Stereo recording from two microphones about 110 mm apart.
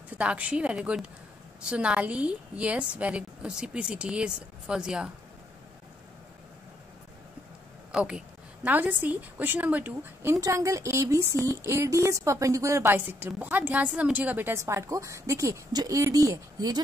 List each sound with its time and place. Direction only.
0.2 s a woman's voice: 10° right (ahead or behind)
7.9 s a woman's voice: 10° right (ahead or behind)
10.3 s a woman's voice: 30° right (ahead or behind)